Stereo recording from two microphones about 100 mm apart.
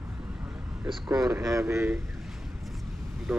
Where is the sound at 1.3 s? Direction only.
35° right (ahead or behind).